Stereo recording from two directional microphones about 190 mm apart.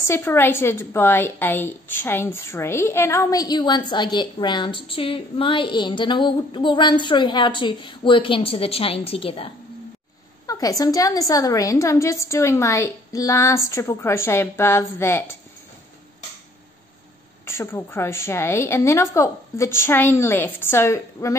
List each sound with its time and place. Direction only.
0.0 s a woman's voice: 10° left (ahead or behind); by 9.5 s 30° left (ahead or behind)
10.4 s a woman's voice: 20° left (ahead or behind)
17.5 s a woman's voice: 15° left (ahead or behind)